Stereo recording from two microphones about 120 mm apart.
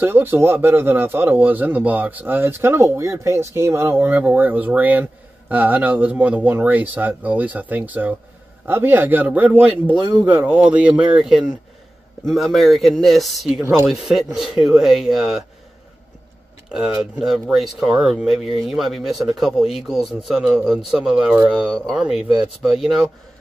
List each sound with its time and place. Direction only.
0.0 s speech: 15° right (ahead or behind)
16.6 s speech: 5° right (ahead or behind)